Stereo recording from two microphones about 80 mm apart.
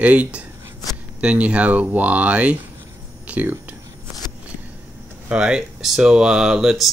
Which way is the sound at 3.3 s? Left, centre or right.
Centre.